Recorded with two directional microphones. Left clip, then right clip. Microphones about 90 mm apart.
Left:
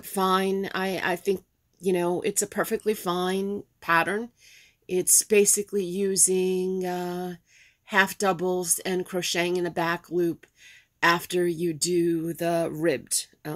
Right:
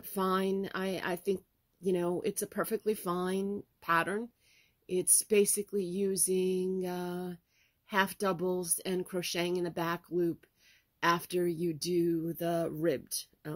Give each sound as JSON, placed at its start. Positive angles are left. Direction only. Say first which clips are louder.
{"t": 0.0, "sound": "speech", "louder": "left 8 dB", "side_deg": -15}